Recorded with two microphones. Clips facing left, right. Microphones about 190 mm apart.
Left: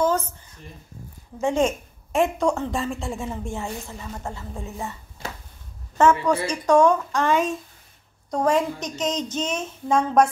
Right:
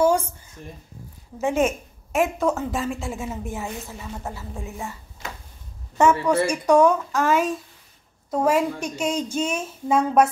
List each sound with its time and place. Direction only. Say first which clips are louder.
0.0 s a sound: right 3 dB; 10° right (ahead or behind)
1.4 s a woman's voice: even; 5° right (ahead or behind)
5.9 s a woman's voice: right 1 dB; 10° right (ahead or behind)